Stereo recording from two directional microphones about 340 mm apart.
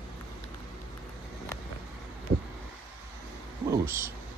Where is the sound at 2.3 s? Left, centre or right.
Right.